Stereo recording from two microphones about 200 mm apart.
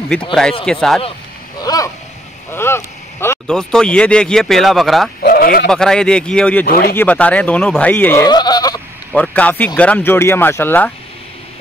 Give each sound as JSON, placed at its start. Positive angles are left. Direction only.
{"t": 0.3, "sound": "speech", "side_deg": 5}
{"t": 1.6, "sound": "a sound", "side_deg": 20}
{"t": 2.5, "sound": "speech", "side_deg": 10}
{"t": 5.2, "sound": "speech", "side_deg": 45}
{"t": 5.7, "sound": "speech", "side_deg": 5}
{"t": 6.6, "sound": "speech", "side_deg": 50}
{"t": 7.0, "sound": "speech", "side_deg": 5}
{"t": 9.1, "sound": "speech", "side_deg": 5}